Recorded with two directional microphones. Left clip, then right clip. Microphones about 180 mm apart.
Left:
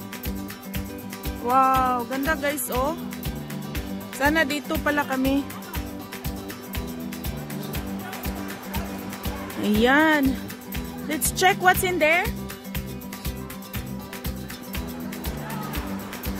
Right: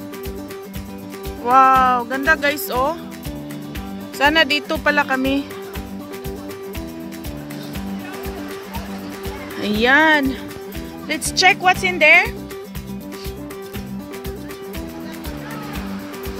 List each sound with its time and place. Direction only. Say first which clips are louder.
1.4 s speech: right 7 dB; 5° right (ahead or behind)
4.2 s speech: right 7 dB; 5° right (ahead or behind)
9.6 s speech: right 5 dB; 15° left (ahead or behind)
11.3 s speech: right 5 dB; 20° left (ahead or behind)